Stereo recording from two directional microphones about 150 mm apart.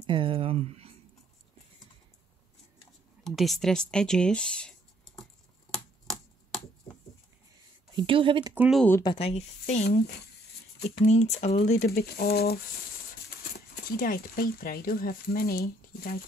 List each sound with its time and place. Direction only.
0.0 s speech: 35° right (ahead or behind)
3.3 s speech: centre (ahead or behind)
5.7 s finger snapping: 5° left (ahead or behind)
7.9 s speech: 35° right (ahead or behind)
8.5 s speech: 5° right (ahead or behind)
9.0 s speech: 35° left (ahead or behind)
9.8 s speech: 90° left
11.1 s speech: 50° left (ahead or behind)
11.9 s speech: 90° left
13.4 s speech: 70° left (ahead or behind); by 16.2 s 85° left